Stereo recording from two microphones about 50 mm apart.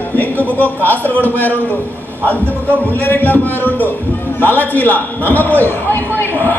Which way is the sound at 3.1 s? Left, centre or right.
Left.